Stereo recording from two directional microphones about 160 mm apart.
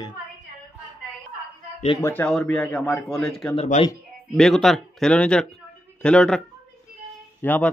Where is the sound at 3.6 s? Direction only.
40° left (ahead or behind).